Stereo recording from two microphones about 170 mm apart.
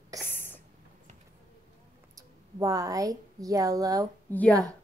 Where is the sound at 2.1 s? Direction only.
20° right (ahead or behind).